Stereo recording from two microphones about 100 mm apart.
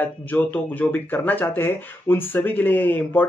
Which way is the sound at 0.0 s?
15° left (ahead or behind).